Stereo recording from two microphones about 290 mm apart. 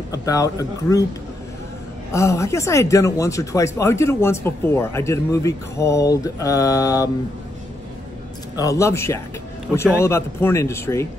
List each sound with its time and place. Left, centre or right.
0.1 s speech: centre
2.1 s speech: centre
8.5 s speech: centre